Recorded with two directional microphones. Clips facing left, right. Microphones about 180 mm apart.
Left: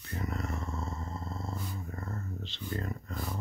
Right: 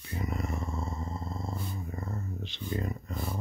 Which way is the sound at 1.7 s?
15° right (ahead or behind).